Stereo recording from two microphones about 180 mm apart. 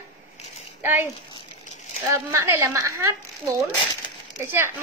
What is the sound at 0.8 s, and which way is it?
Speech, 10° right (ahead or behind).